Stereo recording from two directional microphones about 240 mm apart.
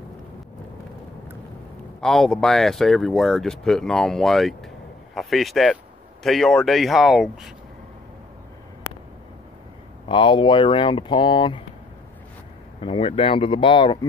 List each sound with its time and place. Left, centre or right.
2.0 s speech: centre
10.0 s speech: left
12.8 s speech: left